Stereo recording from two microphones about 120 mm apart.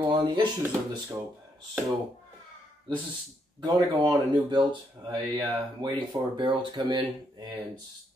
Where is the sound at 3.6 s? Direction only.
40° right (ahead or behind).